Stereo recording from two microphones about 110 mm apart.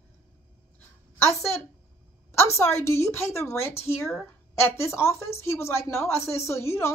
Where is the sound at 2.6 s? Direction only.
25° left (ahead or behind).